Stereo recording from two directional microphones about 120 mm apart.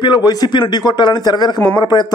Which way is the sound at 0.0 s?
35° left (ahead or behind).